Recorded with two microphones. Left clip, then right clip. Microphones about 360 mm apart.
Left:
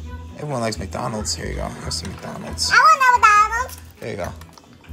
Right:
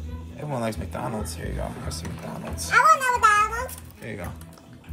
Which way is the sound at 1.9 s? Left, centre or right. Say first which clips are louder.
Left 6 dB; left.